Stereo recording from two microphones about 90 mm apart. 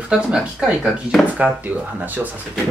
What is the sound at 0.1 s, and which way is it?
Speech, 10° right (ahead or behind).